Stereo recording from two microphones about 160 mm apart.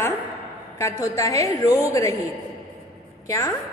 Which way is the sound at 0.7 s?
20° left (ahead or behind).